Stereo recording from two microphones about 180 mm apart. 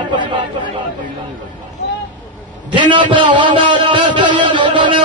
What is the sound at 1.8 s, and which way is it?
Vehicle, 75° left (ahead or behind).